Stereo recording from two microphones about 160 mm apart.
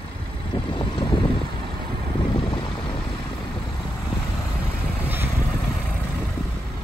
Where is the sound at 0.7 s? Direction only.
30° left (ahead or behind).